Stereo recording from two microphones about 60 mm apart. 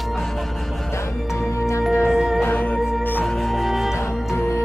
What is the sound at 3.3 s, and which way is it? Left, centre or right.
Music, centre.